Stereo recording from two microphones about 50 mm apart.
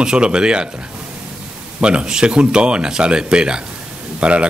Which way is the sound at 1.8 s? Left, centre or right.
Centre.